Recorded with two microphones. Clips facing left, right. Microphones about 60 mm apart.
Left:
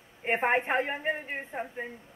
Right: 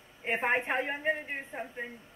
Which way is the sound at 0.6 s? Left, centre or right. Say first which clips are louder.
Left 3 dB; left.